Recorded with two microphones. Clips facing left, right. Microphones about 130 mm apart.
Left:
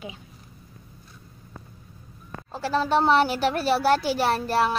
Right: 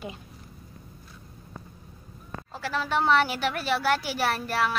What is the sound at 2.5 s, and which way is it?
A woman's voice, 30° left (ahead or behind).